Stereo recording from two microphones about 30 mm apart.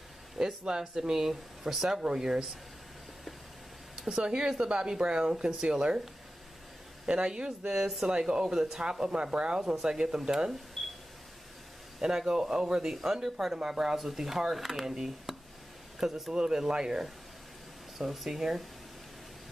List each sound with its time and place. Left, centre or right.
0.7 s speech: right
4.2 s speech: right
7.1 s speech: right
9.1 s speech: right
9.8 s speech: right
10.8 s a sound: centre
12.0 s speech: centre
12.9 s speech: centre
17.9 s speech: centre